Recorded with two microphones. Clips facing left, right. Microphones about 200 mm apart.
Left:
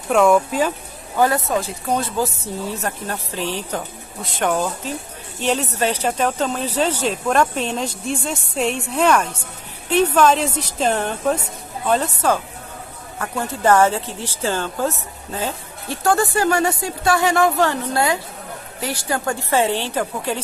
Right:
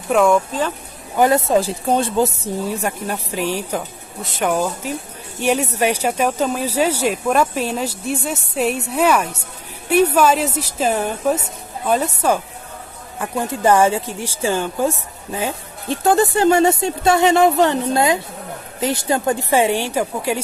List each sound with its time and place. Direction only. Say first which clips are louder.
0.1 s speech: even; centre (ahead or behind)
1.1 s speech: right 3 dB; 20° right (ahead or behind)
1.6 s speech: right 4 dB; 30° right (ahead or behind); by 20.3 s 10° right (ahead or behind)